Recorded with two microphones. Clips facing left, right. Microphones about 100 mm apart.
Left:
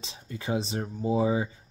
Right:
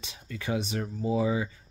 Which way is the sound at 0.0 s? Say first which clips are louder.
Left 1 dB; 30° left (ahead or behind).